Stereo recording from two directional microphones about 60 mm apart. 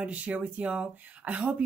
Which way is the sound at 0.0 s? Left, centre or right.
Right.